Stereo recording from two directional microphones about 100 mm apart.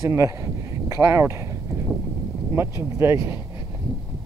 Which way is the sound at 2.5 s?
25° right (ahead or behind).